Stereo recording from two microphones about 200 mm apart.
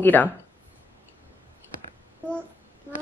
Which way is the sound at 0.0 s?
10° left (ahead or behind).